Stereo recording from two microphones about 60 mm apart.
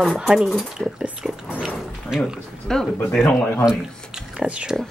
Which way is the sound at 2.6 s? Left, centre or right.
Centre.